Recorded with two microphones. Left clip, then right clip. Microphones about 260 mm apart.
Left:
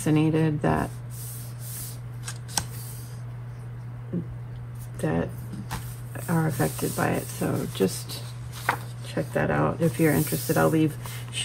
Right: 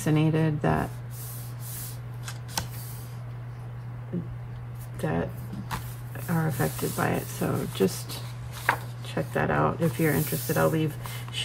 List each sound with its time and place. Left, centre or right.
0.0 s speech: centre
5.0 s speech: centre